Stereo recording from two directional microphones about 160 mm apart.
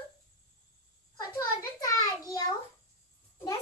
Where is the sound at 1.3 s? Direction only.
20° left (ahead or behind).